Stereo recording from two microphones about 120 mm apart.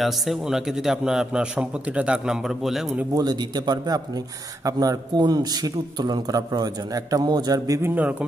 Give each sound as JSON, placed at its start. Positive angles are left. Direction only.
{"t": 0.0, "sound": "a man's voice", "side_deg": 0}
{"t": 3.2, "sound": "a man's voice", "side_deg": -35}
{"t": 7.9, "sound": "speech", "side_deg": -10}